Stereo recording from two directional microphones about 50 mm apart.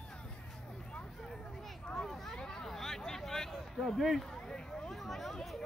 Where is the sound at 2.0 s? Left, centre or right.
Centre.